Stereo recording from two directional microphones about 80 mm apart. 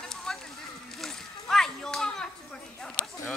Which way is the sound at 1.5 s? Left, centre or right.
Centre.